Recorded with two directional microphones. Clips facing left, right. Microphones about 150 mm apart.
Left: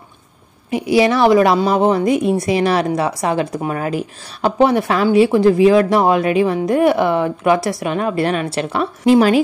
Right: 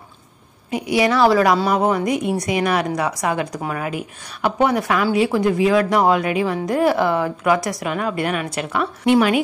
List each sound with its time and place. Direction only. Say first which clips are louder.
0.7 s a woman's voice: left 4 dB; 25° left (ahead or behind)